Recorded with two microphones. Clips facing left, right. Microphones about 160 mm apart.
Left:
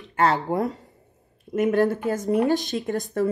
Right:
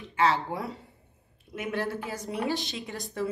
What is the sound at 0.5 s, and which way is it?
Speech, 45° left (ahead or behind).